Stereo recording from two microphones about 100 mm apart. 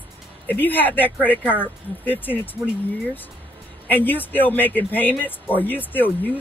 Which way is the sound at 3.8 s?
20° left (ahead or behind).